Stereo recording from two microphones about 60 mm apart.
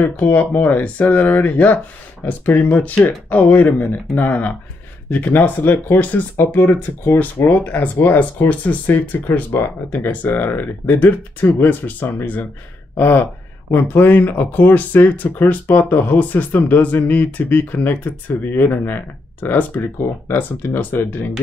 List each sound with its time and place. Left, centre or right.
0.0 s speech: left